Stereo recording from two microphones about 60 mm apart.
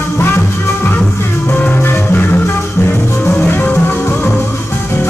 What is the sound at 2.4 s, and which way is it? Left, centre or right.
Music, left.